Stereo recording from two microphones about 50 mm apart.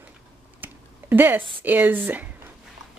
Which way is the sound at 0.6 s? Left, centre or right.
Right.